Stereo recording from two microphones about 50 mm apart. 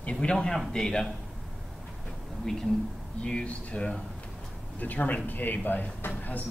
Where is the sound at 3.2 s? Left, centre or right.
Left.